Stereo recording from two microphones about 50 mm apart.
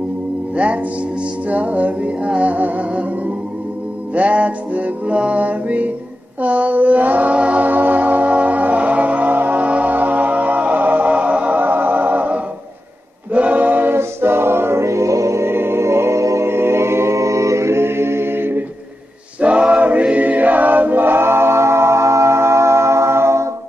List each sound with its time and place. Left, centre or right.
0.6 s music: right
4.1 s music: right
13.9 s music: right
15.5 s music: right
19.4 s choir: right